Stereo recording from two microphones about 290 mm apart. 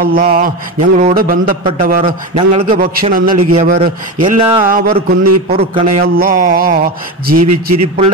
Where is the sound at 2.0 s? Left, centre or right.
Centre.